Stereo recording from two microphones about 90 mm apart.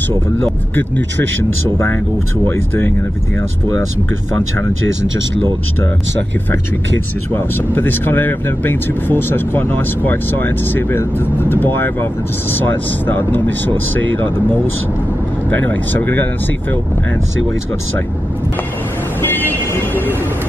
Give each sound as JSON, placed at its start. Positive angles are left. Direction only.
{"t": 2.4, "sound": "speech", "side_deg": 25}
{"t": 7.3, "sound": "speech", "side_deg": 25}
{"t": 15.5, "sound": "speech", "side_deg": 20}
{"t": 19.5, "sound": "vehicle", "side_deg": 20}